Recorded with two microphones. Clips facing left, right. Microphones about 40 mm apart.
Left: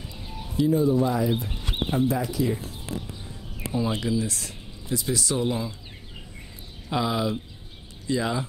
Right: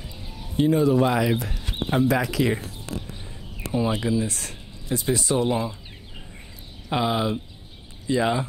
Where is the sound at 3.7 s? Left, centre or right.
Right.